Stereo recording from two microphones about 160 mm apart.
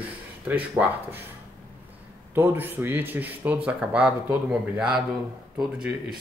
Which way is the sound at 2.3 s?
15° right (ahead or behind).